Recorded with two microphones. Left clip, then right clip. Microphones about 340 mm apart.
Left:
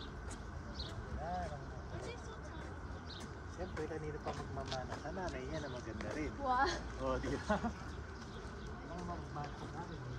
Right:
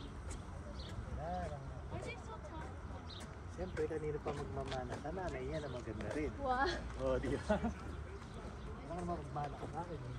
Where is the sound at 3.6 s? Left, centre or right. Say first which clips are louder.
Right 3 dB; left.